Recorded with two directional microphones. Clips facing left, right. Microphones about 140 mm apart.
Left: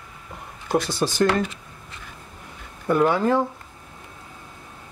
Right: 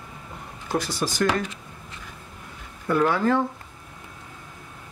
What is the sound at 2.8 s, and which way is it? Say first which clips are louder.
Speech: left 2 dB; 20° left (ahead or behind).